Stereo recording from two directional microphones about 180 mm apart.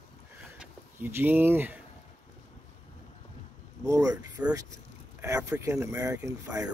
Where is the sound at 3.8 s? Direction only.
20° right (ahead or behind).